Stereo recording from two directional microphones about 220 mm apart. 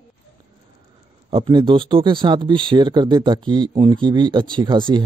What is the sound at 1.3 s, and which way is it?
Speech, 25° right (ahead or behind).